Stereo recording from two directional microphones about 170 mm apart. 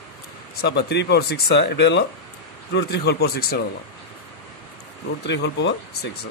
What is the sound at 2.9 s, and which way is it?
Speech, 70° left (ahead or behind).